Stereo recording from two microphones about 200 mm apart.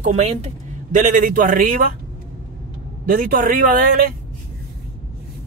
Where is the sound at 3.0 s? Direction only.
45° right (ahead or behind).